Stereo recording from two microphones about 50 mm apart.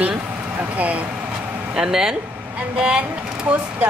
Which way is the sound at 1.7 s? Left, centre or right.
Centre.